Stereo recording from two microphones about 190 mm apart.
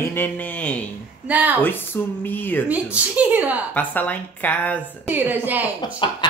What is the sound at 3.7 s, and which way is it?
Speech, 10° left (ahead or behind).